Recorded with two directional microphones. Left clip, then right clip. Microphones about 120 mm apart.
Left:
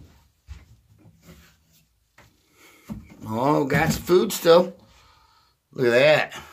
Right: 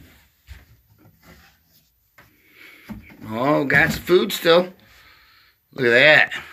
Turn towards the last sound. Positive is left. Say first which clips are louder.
# right 4 dB
turn(degrees=15)  # may be behind; listen again after turning